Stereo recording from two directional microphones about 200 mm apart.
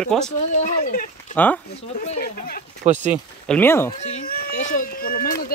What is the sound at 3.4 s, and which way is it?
Speech, 10° left (ahead or behind).